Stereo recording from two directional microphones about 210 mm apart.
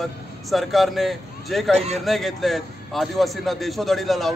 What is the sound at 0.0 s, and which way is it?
A man's voice, centre (ahead or behind).